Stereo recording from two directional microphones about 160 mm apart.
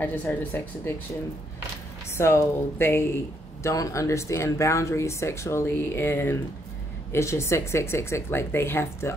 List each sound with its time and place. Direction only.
0.0 s speech: 10° left (ahead or behind)
2.1 s speech: 15° left (ahead or behind)